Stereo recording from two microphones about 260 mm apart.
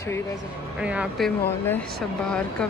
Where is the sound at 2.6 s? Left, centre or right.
Centre.